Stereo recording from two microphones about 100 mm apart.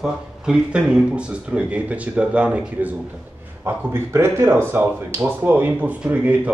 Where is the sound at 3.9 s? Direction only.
25° right (ahead or behind).